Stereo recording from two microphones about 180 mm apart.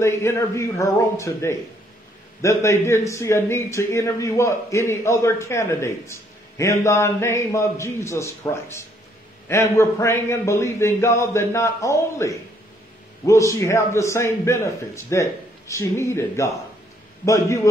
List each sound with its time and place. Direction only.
0.0 s a man's voice: 15° left (ahead or behind)